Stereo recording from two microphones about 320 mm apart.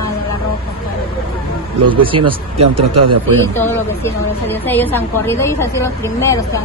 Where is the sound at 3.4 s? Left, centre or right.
Centre.